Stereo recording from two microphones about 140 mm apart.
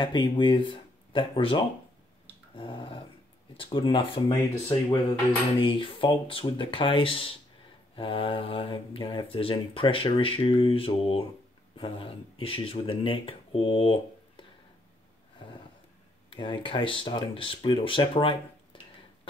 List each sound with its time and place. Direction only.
0.0 s speech: 35° left (ahead or behind)
2.5 s dog: 35° left (ahead or behind)
3.5 s speech: 40° left (ahead or behind)
16.3 s speech: 35° left (ahead or behind)